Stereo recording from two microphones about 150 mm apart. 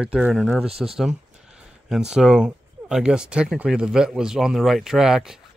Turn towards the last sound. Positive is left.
turn(degrees=-5)  # may be behind; listen again after turning